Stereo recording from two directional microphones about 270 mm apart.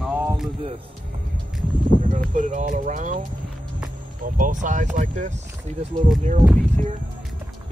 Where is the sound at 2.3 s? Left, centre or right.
Right.